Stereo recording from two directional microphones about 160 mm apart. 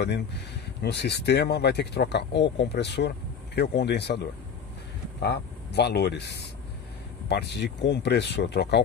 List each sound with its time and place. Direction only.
0.8 s speech: 90° left